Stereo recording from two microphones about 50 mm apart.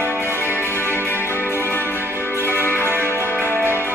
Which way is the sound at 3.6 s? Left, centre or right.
Right.